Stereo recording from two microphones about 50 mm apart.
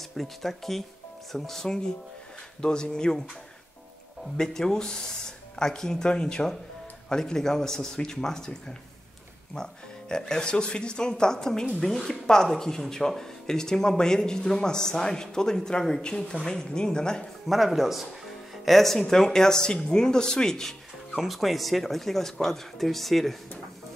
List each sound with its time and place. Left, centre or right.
0.1 s speech: centre
4.4 s speech: centre
17.5 s speech: centre
21.2 s speech: centre